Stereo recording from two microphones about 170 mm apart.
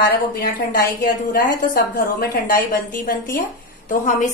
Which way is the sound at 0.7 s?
55° left (ahead or behind).